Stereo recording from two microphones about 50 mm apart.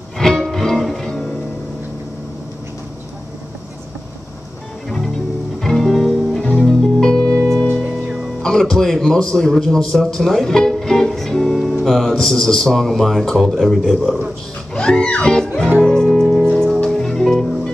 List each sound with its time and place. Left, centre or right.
0.2 s music: centre
4.8 s music: centre
7.0 s music: centre
8.4 s speech: centre
13.4 s speech: centre
14.7 s music: centre